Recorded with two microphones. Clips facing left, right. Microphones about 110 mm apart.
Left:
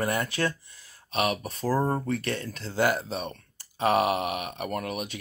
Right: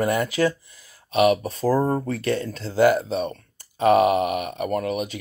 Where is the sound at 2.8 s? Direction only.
45° right (ahead or behind).